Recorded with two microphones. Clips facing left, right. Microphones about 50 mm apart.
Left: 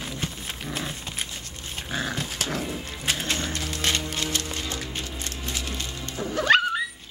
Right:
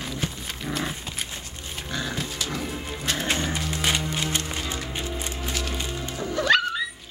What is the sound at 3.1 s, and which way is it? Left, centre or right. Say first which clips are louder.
Music: right 3 dB; centre.